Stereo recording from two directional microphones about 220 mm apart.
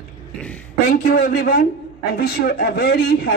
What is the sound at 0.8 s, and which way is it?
Speech, 45° left (ahead or behind).